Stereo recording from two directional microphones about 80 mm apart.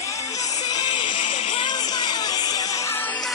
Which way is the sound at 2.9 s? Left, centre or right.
Left.